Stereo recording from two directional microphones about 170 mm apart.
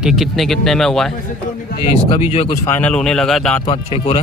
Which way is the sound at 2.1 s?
35° left (ahead or behind).